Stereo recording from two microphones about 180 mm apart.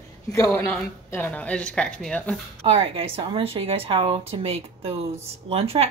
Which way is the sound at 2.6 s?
35° right (ahead or behind).